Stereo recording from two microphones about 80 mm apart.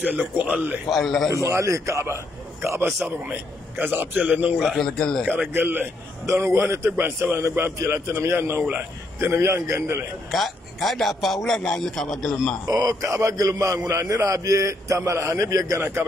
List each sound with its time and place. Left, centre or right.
0.0 s a man's voice: centre
0.8 s a man's voice: centre
1.3 s a man's voice: right
3.3 s a man's voice: right
4.6 s a man's voice: centre
5.5 s a man's voice: right
6.2 s a man's voice: right
10.3 s a man's voice: centre
12.6 s a man's voice: right